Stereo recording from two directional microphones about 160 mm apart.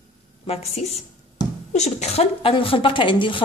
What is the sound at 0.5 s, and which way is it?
Speech, 40° left (ahead or behind).